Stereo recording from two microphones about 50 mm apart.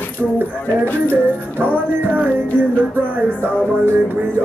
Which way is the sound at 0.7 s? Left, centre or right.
Left.